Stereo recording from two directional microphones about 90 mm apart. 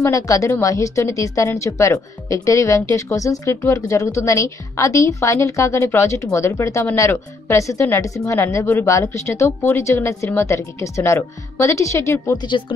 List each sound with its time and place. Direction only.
0.0 s a woman's voice: 35° left (ahead or behind)
12.4 s speech: 60° left (ahead or behind)